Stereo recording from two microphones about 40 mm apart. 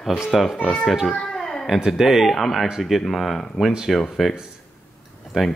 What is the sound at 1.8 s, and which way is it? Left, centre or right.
Speech, centre.